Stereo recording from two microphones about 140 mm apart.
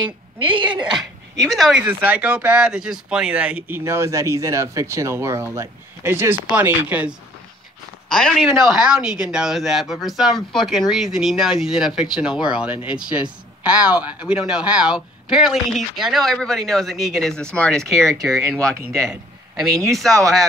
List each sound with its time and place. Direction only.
0.0 s a woman's voice: 35° right (ahead or behind)
1.5 s speech: centre (ahead or behind)
8.1 s speech: 5° left (ahead or behind)
19.9 s speech: centre (ahead or behind)